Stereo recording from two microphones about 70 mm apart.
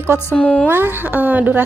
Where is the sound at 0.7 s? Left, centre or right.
Right.